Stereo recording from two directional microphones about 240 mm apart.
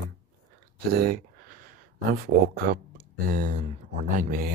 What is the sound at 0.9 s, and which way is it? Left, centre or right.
Speech, right.